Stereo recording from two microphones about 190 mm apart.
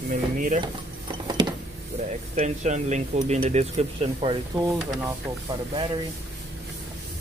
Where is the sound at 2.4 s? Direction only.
40° right (ahead or behind).